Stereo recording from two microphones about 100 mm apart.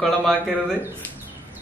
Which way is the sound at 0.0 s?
5° left (ahead or behind).